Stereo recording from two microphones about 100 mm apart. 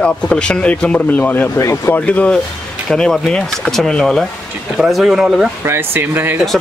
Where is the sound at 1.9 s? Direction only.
15° left (ahead or behind); by 5.5 s 5° right (ahead or behind).